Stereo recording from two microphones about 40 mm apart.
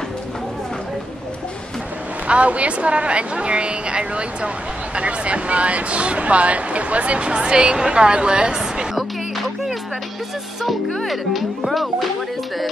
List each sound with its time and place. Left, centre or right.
2.2 s a woman's voice: right
11.1 s speech: centre